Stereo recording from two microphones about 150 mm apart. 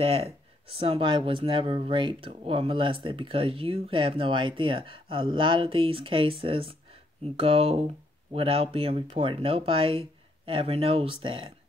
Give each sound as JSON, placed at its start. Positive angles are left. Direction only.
{"t": 0.0, "sound": "speech", "side_deg": -40}